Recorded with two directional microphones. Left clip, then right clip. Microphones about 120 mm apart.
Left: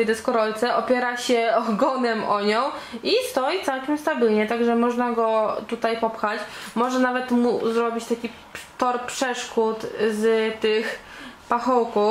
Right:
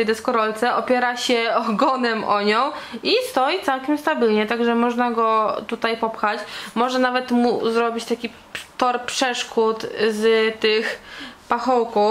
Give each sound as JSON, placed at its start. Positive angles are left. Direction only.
{"t": 0.0, "sound": "speech", "side_deg": -35}
{"t": 1.5, "sound": "speech", "side_deg": -30}
{"t": 11.4, "sound": "speech", "side_deg": -30}